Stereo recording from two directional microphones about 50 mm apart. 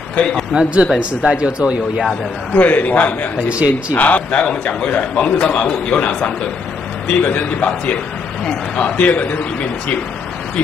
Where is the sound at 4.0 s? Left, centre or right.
Left.